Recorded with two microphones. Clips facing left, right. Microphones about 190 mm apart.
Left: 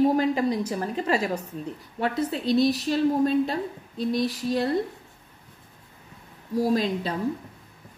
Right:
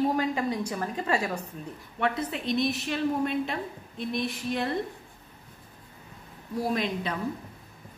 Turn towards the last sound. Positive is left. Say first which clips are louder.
# left 4 dB
turn(degrees=30)  # may be behind; listen again after turning